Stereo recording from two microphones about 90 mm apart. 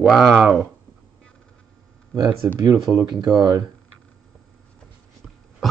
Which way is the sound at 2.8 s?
50° right (ahead or behind).